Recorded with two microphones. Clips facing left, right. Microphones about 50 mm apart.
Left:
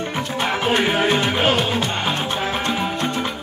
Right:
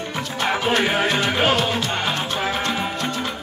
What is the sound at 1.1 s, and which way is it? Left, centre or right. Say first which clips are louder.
Music: left 1 dB; centre.